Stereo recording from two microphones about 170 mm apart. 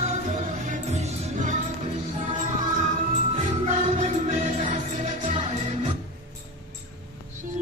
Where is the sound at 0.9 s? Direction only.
50° right (ahead or behind).